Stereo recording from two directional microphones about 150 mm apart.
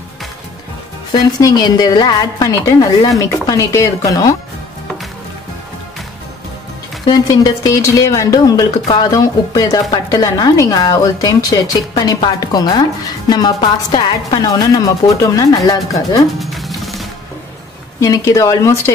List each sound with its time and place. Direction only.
1.4 s a woman's voice: 25° left (ahead or behind)
7.1 s a woman's voice: 25° left (ahead or behind)
16.3 s music: centre (ahead or behind)
18.0 s a woman's voice: 20° left (ahead or behind)